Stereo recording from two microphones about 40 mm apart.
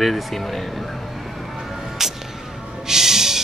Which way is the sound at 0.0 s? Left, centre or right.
Centre.